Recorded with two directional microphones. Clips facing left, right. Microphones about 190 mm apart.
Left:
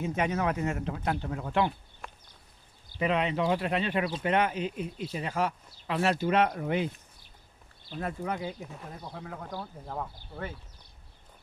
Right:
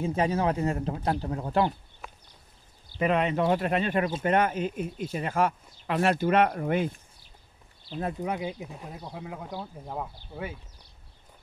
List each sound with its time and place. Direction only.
0.0 s speech: 30° right (ahead or behind)
2.0 s a sound: centre (ahead or behind)
3.0 s speech: 50° right (ahead or behind)
8.0 s speech: 20° right (ahead or behind)